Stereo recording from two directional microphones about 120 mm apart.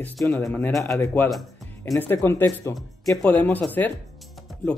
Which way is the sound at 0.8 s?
25° left (ahead or behind).